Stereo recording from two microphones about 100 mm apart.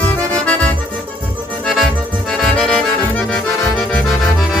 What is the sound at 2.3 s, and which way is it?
Accordion, 5° left (ahead or behind).